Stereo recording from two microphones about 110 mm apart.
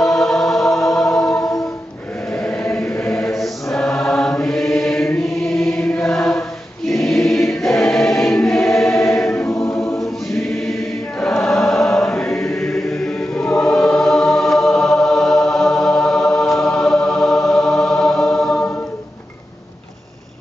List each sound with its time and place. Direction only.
0.0 s music: 5° left (ahead or behind)
2.3 s chant: 10° left (ahead or behind)
2.6 s choir: 15° left (ahead or behind)
3.7 s choir: 5° left (ahead or behind)
9.3 s choir: 20° left (ahead or behind)
9.8 s choir: 5° left (ahead or behind)